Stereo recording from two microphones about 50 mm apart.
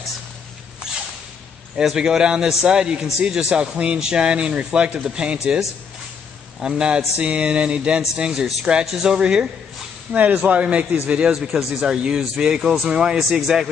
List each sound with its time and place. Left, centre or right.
1.8 s a man's voice: centre
6.6 s a man's voice: centre
11.3 s a man's voice: centre